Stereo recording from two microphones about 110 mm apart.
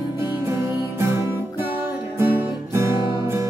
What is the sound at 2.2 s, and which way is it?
Music, 20° right (ahead or behind).